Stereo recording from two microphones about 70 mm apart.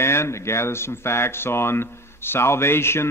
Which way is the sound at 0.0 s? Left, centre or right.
Left.